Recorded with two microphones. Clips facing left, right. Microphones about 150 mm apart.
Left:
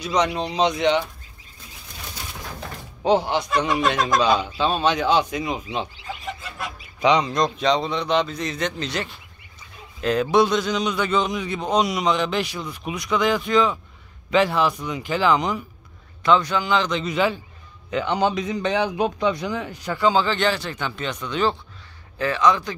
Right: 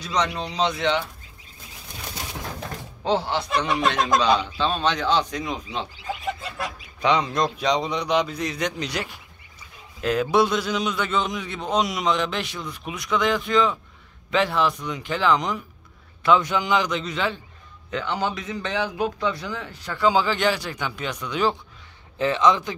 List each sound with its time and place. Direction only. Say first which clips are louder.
0.0 s a man's voice: left 3 dB; 10° left (ahead or behind)
3.0 s a man's voice: left 4 dB; 15° left (ahead or behind)
7.0 s a man's voice: left 2 dB; centre (ahead or behind)
16.3 s a man's voice: left 1 dB; 15° right (ahead or behind)
17.0 s a man's voice: left 5 dB; 10° left (ahead or behind)
18.0 s a man's voice: left 5 dB; 20° left (ahead or behind)
20.0 s a man's voice: left 1 dB; 10° right (ahead or behind)
22.2 s speech: even; 20° right (ahead or behind)